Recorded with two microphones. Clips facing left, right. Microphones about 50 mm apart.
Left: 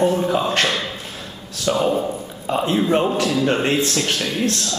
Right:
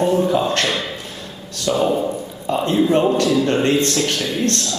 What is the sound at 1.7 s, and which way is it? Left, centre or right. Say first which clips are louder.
A man's voice: right 1 dB; centre.